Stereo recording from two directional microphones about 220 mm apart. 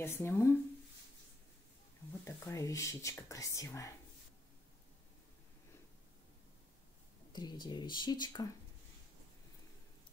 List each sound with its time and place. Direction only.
0.0 s speech: 10° left (ahead or behind)
2.2 s speech: 15° left (ahead or behind)
7.3 s speech: 20° left (ahead or behind)